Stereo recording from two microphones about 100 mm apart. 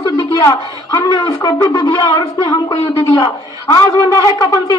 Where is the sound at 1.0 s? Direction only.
35° left (ahead or behind).